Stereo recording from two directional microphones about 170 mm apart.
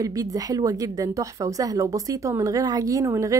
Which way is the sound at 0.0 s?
20° right (ahead or behind).